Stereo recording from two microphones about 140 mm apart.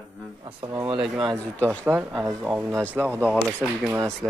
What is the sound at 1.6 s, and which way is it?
Speech, 10° right (ahead or behind).